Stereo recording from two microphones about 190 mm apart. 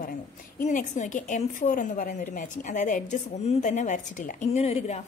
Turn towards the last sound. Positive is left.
turn(degrees=40)  # may be behind; listen again after turning